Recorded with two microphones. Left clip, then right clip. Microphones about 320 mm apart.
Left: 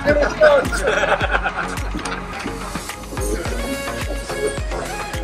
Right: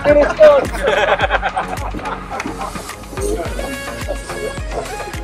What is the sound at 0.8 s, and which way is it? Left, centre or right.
Music, right.